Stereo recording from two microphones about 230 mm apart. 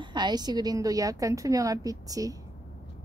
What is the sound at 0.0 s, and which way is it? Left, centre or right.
A woman's voice, centre.